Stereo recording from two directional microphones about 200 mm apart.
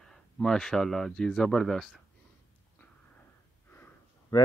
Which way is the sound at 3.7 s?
10° left (ahead or behind).